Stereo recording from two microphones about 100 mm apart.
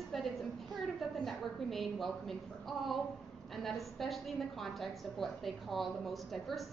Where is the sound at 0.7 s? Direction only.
45° right (ahead or behind).